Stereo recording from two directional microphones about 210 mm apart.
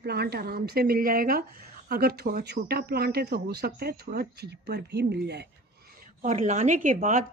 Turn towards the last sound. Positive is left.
turn(degrees=-40)  # may be behind; listen again after turning